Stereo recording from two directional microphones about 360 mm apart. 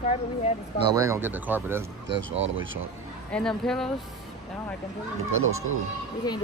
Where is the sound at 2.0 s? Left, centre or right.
Right.